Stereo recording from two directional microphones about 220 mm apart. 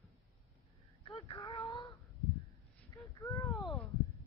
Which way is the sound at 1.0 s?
20° left (ahead or behind).